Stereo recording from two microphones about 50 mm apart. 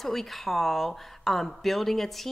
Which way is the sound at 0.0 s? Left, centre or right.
Centre.